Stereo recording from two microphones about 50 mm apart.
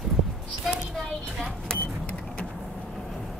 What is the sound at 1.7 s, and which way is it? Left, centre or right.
Vehicle, left.